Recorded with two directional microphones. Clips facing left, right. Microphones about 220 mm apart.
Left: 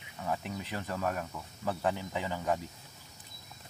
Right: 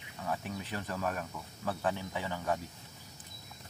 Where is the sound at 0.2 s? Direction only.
15° left (ahead or behind).